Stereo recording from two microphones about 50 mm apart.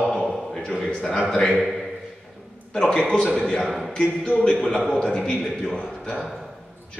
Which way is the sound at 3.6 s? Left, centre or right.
Centre.